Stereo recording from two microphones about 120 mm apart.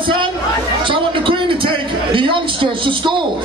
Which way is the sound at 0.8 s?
45° right (ahead or behind).